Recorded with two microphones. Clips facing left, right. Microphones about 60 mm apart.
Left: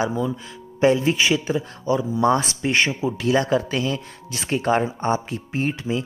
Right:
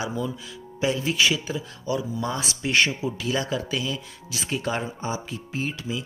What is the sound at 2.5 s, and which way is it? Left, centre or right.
Speech, left.